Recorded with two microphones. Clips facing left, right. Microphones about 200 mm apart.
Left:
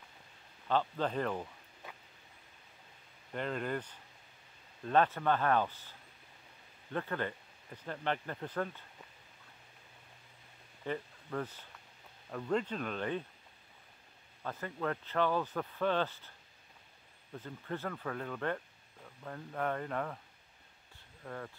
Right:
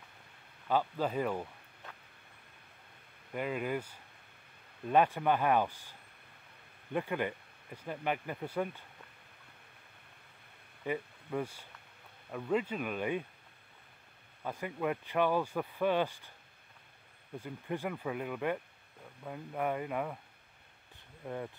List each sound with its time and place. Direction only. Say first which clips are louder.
0.7 s speech: right 1 dB; 10° right (ahead or behind)
3.3 s speech: right 2 dB; 10° right (ahead or behind)
10.9 s speech: right 2 dB; 10° right (ahead or behind)
14.4 s speech: right 2 dB; 15° right (ahead or behind)
17.4 s speech: right 3 dB; 15° right (ahead or behind)
21.2 s speech: right 4 dB; 20° right (ahead or behind)